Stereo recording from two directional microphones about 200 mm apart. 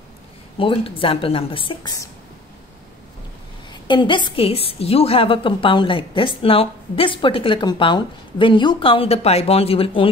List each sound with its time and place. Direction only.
0.6 s a woman's voice: 25° left (ahead or behind)
3.8 s a woman's voice: 20° left (ahead or behind)